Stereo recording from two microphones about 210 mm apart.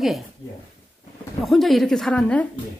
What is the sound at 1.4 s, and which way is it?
Speech, centre (ahead or behind).